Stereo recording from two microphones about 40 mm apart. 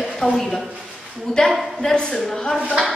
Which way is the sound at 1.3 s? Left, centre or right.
Centre.